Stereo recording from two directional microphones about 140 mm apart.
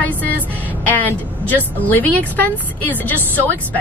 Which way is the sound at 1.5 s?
10° left (ahead or behind).